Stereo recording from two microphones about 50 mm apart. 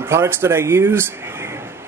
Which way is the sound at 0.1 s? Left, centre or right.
Right.